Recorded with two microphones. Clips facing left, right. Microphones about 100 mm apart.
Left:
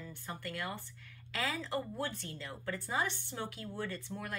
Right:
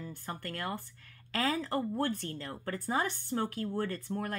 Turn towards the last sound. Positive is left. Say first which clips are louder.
# right 6 dB
turn(degrees=-45)  # may be behind; listen again after turning